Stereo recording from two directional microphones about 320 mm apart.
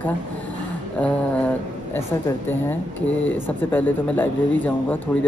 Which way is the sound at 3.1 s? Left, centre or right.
Left.